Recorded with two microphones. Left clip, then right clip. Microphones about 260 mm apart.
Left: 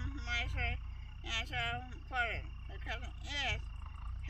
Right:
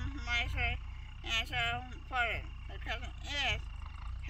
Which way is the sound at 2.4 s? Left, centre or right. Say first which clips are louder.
Right 3 dB; right.